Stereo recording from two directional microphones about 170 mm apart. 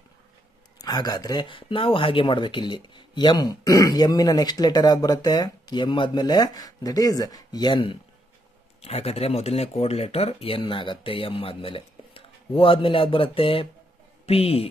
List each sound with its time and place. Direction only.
0.7 s speech: 25° left (ahead or behind)